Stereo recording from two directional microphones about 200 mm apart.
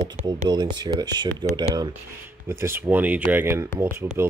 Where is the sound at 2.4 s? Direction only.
10° right (ahead or behind).